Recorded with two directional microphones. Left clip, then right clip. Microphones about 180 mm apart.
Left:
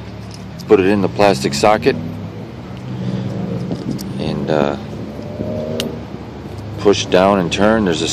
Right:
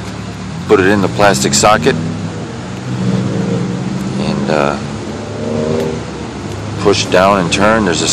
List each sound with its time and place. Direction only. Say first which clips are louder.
0.7 s speech: right 2 dB; 15° left (ahead or behind)
4.2 s a sound: right 3 dB; 20° left (ahead or behind)
6.8 s speech: right 2 dB; 20° left (ahead or behind)